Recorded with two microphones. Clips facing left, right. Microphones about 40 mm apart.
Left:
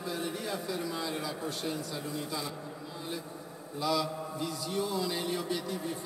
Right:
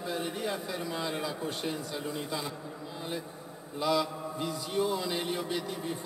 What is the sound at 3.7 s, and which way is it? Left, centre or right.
A man's voice, right.